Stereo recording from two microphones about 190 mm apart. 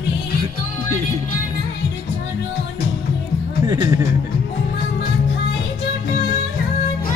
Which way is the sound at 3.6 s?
20° right (ahead or behind).